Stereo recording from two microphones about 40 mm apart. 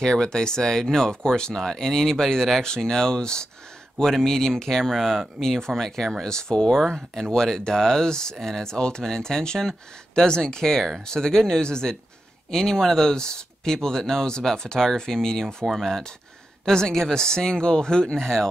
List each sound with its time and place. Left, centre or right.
0.0 s speech: centre
15.4 s speech: centre
15.8 s speech: centre